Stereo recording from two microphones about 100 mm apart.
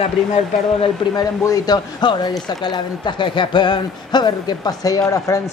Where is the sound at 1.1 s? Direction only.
35° left (ahead or behind).